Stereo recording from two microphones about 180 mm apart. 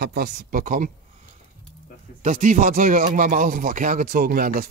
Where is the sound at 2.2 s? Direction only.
45° right (ahead or behind).